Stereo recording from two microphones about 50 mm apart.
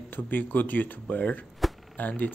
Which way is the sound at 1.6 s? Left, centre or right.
Centre.